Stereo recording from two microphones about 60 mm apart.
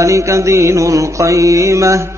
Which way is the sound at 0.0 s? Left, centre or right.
Right.